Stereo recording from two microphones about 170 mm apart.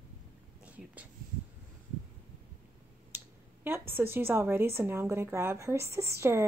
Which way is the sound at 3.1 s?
15° right (ahead or behind).